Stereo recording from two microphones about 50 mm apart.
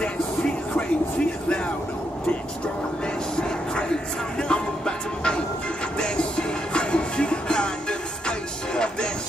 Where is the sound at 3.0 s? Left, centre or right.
Centre.